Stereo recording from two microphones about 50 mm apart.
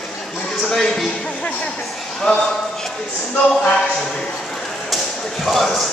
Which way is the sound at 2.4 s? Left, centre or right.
Centre.